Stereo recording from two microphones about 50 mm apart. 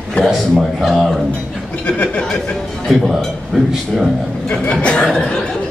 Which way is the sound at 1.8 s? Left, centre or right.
Left.